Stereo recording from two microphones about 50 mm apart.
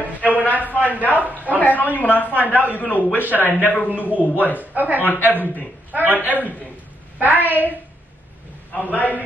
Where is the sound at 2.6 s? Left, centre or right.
Right.